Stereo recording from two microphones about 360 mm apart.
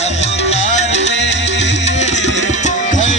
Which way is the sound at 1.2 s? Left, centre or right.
Left.